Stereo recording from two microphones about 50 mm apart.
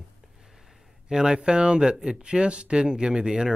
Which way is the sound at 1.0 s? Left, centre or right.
Centre.